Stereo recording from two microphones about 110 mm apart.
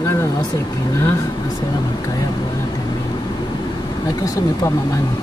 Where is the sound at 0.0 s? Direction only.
25° left (ahead or behind).